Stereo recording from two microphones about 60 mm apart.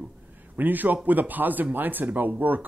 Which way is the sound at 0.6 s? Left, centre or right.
Right.